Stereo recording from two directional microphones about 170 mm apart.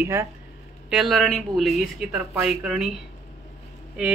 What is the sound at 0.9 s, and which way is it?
Speech, centre (ahead or behind).